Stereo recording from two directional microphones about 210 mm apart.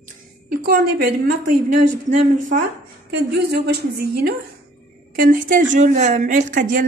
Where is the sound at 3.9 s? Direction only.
45° right (ahead or behind).